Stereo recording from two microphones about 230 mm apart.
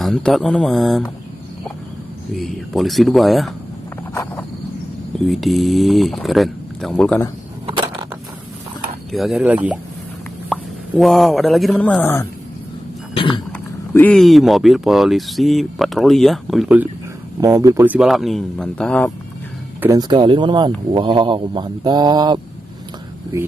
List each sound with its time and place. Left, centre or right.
0.0 s speech: centre
2.3 s speech: centre
4.1 s cricket: centre
5.2 s speech: centre
7.6 s a sound: centre
9.1 s speech: centre
13.1 s a sound: left
13.5 s speech: centre
17.4 s speech: centre
19.8 s speech: centre